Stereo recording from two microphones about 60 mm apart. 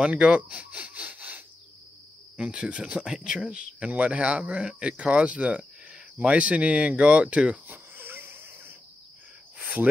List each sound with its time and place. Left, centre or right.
0.0 s speech: centre
2.3 s speech: centre
7.6 s wheeze: right